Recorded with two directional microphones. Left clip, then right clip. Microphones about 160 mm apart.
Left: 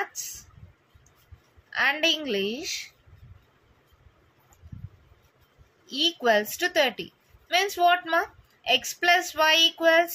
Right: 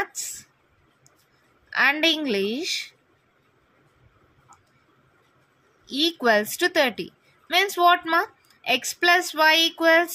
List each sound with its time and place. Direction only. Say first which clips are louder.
1.7 s a woman's voice: right 3 dB; 50° right (ahead or behind)
5.9 s a woman's voice: right 2 dB; 50° right (ahead or behind)